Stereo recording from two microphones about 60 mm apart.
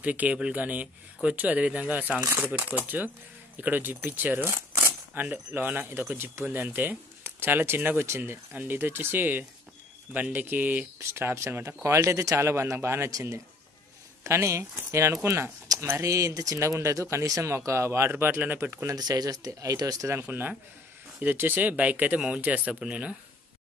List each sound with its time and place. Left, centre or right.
0.0 s speech: right
6.4 s speech: right
11.0 s speech: right
14.2 s speech: right
18.1 s speech: right
18.9 s speech: right
20.2 s speech: right